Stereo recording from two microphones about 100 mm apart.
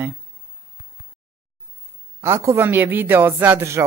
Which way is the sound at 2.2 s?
30° right (ahead or behind).